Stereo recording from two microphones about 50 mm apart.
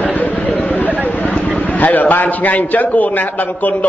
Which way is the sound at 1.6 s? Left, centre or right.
Left.